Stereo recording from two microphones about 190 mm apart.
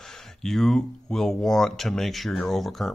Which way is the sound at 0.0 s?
Centre (ahead or behind).